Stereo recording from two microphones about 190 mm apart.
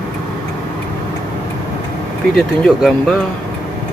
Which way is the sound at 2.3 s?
Centre (ahead or behind).